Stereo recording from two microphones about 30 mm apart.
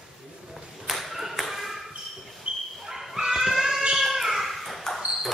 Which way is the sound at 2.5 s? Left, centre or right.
Right.